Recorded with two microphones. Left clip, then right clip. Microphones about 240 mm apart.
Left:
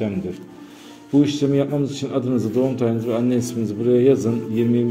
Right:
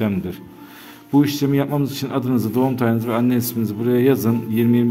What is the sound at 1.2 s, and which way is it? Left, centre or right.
A man's voice, right.